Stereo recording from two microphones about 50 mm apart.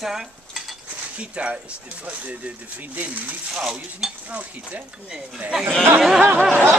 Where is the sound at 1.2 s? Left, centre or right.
Right.